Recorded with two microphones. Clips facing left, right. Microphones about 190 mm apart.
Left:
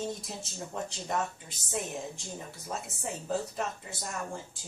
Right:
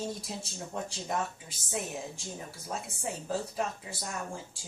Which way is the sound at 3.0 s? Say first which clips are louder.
Left 1 dB; centre (ahead or behind).